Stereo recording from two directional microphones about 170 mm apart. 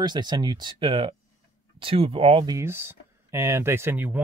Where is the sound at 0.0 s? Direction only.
25° right (ahead or behind).